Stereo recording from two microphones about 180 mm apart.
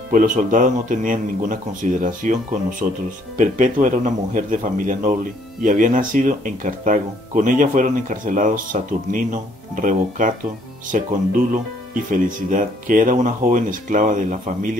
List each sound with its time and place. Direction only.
0.1 s speech: 50° right (ahead or behind)